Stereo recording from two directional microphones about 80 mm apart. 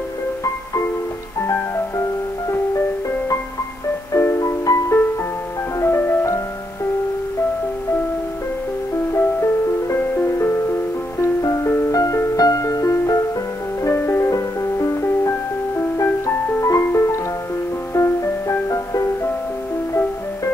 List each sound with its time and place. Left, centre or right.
4.1 s music: left
4.4 s music: left
9.9 s music: left
13.8 s music: left